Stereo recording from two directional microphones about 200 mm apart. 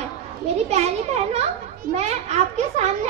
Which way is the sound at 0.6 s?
35° right (ahead or behind).